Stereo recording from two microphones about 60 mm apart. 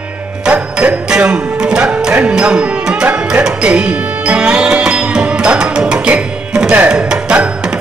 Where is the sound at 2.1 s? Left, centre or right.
Centre.